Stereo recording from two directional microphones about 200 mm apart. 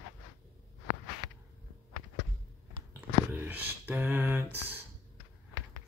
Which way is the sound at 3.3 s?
10° right (ahead or behind).